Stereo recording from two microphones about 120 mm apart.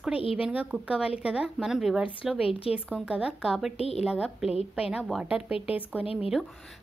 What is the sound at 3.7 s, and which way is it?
Speech, 60° left (ahead or behind).